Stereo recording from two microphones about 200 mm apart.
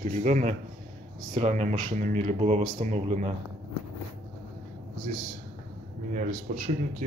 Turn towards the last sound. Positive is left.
turn(degrees=-40)  # may be behind; listen again after turning